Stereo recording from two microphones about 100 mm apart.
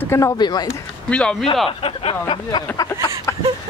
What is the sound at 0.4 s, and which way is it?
Speech, 45° left (ahead or behind).